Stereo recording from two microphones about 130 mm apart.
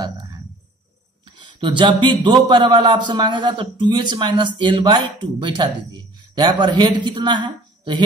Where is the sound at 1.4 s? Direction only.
35° right (ahead or behind).